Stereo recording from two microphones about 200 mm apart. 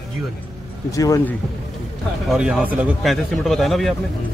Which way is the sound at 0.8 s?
15° left (ahead or behind).